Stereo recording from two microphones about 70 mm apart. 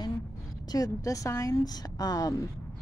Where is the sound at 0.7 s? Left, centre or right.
Left.